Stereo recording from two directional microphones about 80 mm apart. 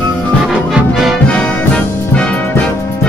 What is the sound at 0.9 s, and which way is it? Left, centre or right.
Music, centre.